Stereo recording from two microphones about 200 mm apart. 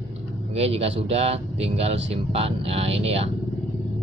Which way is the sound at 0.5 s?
30° right (ahead or behind).